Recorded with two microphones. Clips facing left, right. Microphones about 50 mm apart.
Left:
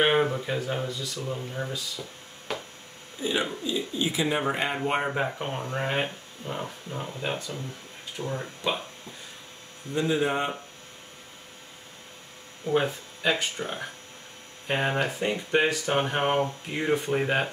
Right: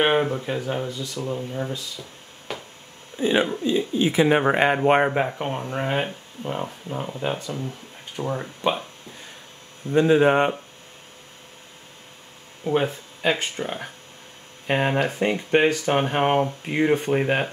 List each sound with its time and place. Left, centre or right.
0.0 s speech: centre
2.5 s a sound: centre
3.2 s speech: right
5.2 s speech: centre
6.4 s speech: right
9.9 s speech: right
12.8 s speech: centre
15.0 s speech: right
17.1 s speech: centre